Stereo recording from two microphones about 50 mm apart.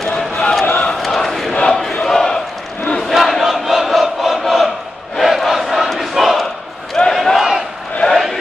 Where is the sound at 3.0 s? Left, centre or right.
Centre.